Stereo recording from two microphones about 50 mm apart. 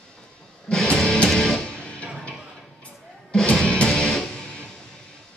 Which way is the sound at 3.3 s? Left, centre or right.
Centre.